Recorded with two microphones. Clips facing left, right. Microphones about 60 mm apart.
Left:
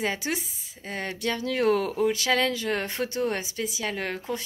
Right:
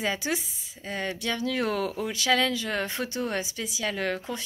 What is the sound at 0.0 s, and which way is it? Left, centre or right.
Speech, left.